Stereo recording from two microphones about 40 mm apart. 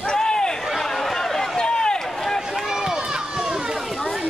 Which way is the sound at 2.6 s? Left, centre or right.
Centre.